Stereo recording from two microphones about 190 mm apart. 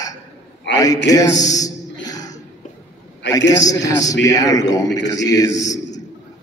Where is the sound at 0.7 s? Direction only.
20° left (ahead or behind).